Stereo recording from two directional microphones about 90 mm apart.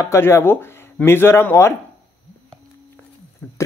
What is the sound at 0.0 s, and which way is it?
Speech, 30° left (ahead or behind).